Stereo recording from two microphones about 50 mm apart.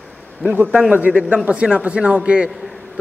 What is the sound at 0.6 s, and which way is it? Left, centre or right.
Speech, right.